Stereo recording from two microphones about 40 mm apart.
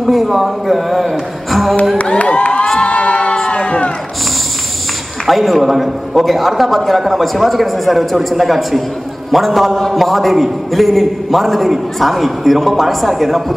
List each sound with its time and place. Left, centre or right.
0.0 s a man's voice: centre
1.5 s a sound: centre
2.0 s speech: left
2.3 s crowd: left
3.5 s music: left
5.2 s a man's voice: centre